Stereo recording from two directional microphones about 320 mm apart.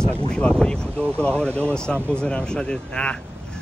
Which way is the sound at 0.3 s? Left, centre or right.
Centre.